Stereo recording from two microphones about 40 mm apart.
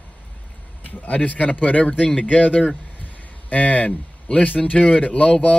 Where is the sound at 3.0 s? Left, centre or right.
Left.